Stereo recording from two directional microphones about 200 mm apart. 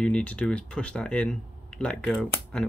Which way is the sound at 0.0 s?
5° left (ahead or behind).